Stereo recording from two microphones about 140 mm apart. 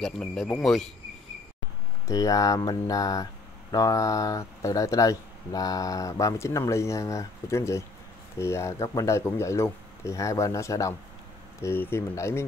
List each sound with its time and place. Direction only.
0.0 s speech: 5° left (ahead or behind)
2.0 s speech: 25° left (ahead or behind)